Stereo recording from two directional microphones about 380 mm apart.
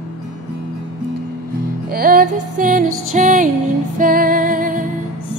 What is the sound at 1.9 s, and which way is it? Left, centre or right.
Music, right.